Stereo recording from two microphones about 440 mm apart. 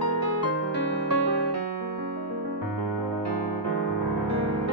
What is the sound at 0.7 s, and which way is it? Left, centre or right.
Music, left.